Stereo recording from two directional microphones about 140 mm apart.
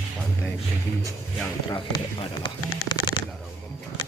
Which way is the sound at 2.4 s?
30° left (ahead or behind).